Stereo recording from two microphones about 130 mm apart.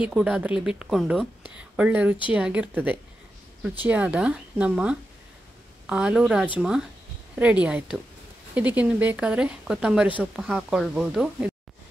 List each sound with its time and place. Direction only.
0.0 s speech: 5° right (ahead or behind)